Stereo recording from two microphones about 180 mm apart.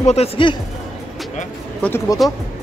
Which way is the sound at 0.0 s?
35° left (ahead or behind).